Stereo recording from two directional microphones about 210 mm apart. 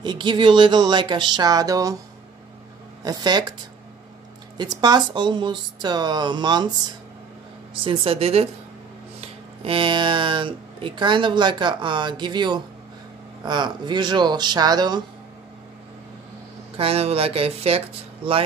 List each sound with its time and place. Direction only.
0.0 s speech: 20° right (ahead or behind)
3.0 s speech: 20° right (ahead or behind)
4.6 s speech: 20° right (ahead or behind)
7.7 s speech: 25° right (ahead or behind)
9.7 s speech: 25° right (ahead or behind)
16.7 s speech: 30° right (ahead or behind)